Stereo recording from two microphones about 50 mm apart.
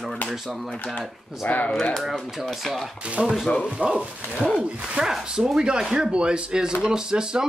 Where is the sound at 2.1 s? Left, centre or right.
Centre.